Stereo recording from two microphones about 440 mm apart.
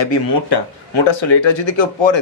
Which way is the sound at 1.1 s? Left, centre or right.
Left.